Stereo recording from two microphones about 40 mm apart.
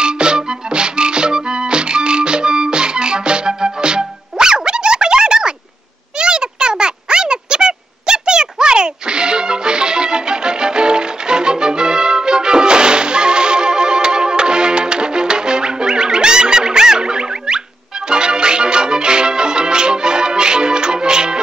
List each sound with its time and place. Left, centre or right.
0.0 s music: right
6.1 s a sound: right
18.1 s music: right